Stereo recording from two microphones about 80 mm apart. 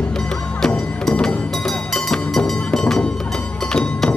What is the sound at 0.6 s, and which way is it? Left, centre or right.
Music, centre.